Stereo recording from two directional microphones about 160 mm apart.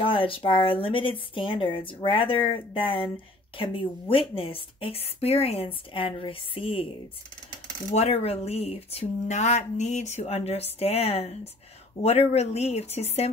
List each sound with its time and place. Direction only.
0.0 s speech: 35° left (ahead or behind)
7.9 s speech: 40° left (ahead or behind)